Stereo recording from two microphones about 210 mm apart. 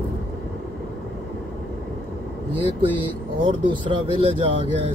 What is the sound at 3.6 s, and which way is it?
Speech, 25° right (ahead or behind).